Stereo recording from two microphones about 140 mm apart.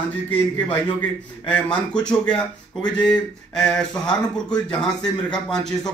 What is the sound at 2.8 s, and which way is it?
Speech, 30° left (ahead or behind).